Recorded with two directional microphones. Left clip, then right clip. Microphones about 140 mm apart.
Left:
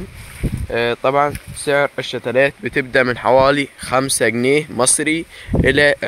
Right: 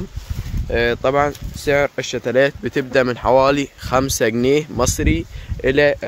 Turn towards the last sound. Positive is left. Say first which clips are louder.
# left 2 dB
turn(degrees=5)  # may be behind; listen again after turning